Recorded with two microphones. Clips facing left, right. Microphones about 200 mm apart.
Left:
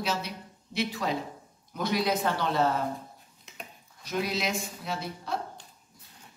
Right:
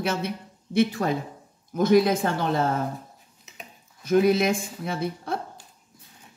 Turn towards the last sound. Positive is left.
turn(degrees=-55)  # may be behind; listen again after turning